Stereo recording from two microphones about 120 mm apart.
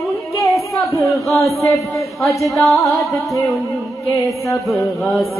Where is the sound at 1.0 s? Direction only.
Centre (ahead or behind).